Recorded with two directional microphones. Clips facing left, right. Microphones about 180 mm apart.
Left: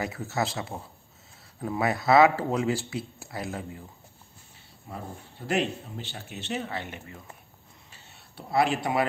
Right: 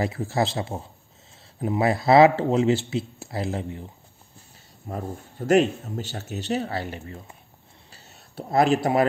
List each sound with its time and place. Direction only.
0.0 s speech: 30° right (ahead or behind)
4.9 s speech: 45° right (ahead or behind)
7.9 s a sound: 40° right (ahead or behind)